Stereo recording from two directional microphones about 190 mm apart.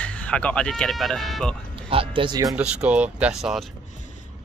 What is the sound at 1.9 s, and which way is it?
Speech, 30° right (ahead or behind).